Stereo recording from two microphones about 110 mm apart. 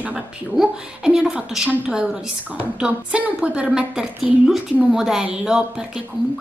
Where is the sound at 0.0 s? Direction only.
5° right (ahead or behind).